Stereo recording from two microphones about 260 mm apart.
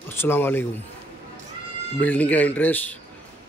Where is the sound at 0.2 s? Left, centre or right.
Centre.